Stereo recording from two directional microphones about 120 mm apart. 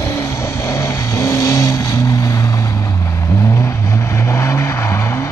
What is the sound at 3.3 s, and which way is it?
Vehicle, 25° left (ahead or behind).